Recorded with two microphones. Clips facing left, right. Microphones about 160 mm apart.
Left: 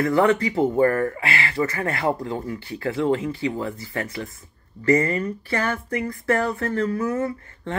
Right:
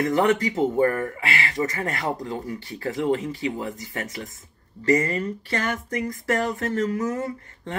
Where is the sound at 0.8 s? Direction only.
40° left (ahead or behind).